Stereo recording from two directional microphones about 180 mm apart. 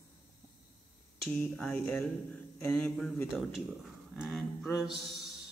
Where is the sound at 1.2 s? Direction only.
5° left (ahead or behind).